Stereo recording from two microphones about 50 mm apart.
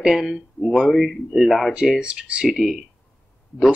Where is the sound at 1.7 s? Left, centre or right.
Centre.